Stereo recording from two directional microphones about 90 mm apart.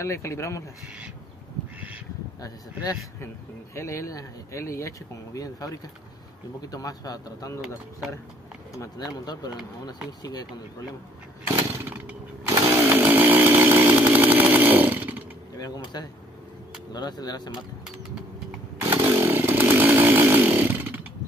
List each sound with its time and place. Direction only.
0.0 s speech: 35° left (ahead or behind)
2.4 s speech: 45° left (ahead or behind)
3.7 s speech: 35° left (ahead or behind)
8.7 s speech: 45° left (ahead or behind)
11.4 s chainsaw: 25° right (ahead or behind)
15.8 s speech: 50° left (ahead or behind)
18.9 s chainsaw: 30° right (ahead or behind)